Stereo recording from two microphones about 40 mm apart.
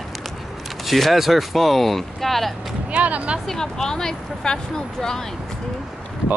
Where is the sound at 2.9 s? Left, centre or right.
Right.